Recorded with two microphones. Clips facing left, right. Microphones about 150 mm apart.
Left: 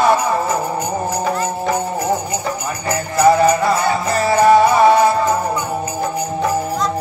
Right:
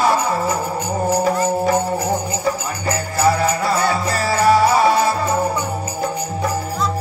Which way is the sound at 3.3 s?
20° left (ahead or behind).